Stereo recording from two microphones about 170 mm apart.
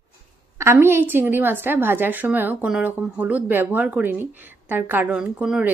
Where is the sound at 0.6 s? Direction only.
15° right (ahead or behind).